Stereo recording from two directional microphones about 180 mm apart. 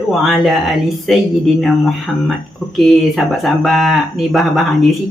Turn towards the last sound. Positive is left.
turn(degrees=0)  # may be behind; listen again after turning